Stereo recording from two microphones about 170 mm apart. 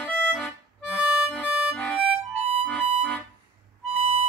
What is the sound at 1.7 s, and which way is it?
Harmonica, 5° left (ahead or behind).